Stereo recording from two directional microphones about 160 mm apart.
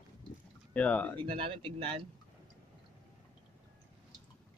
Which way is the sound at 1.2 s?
35° right (ahead or behind).